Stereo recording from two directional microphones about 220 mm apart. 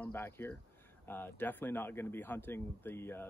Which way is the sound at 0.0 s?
10° left (ahead or behind).